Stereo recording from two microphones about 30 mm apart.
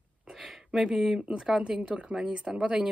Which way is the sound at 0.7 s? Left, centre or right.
Centre.